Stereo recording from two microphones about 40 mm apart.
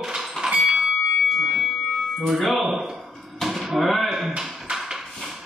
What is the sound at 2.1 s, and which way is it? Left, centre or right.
Speech, centre.